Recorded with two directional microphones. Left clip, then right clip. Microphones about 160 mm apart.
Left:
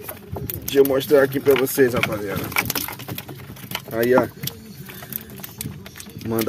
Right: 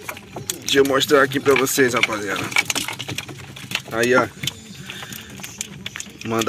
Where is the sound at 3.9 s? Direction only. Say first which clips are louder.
Even; 20° left (ahead or behind).